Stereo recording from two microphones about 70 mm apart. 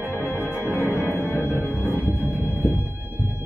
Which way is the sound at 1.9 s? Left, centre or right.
Right.